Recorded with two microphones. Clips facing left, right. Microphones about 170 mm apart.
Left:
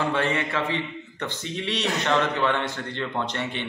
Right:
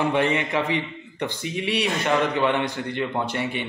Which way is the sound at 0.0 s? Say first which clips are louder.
Right 3 dB; 15° right (ahead or behind).